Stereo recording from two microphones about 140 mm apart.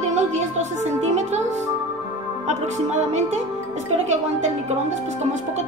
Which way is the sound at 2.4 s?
55° right (ahead or behind).